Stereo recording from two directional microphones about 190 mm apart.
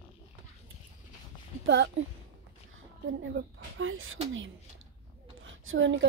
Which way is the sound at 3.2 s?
90° right.